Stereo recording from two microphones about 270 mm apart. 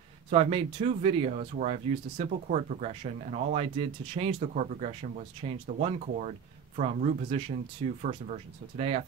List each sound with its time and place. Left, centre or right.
0.3 s speech: right